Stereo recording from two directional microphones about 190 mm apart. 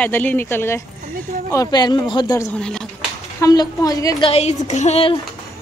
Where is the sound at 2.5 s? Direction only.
5° left (ahead or behind).